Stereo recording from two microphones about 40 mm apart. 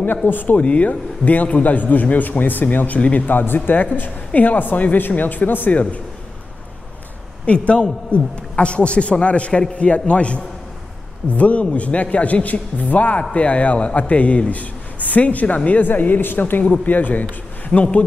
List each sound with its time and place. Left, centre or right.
0.3 s a man's voice: left
0.6 s a man's voice: left
5.7 s a man's voice: left
7.4 s a man's voice: left
15.8 s a man's voice: left